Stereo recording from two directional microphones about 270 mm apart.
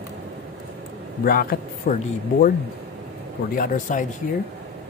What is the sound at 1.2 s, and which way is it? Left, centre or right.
Speech, left.